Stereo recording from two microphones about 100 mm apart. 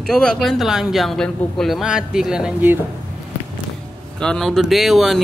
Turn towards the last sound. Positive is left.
turn(degrees=0)  # may be behind; listen again after turning